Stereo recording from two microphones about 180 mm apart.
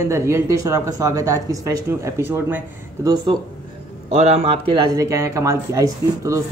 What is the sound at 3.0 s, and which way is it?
Speech, 25° right (ahead or behind).